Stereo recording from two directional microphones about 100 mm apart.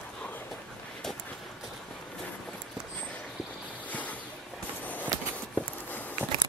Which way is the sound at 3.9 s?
15° left (ahead or behind).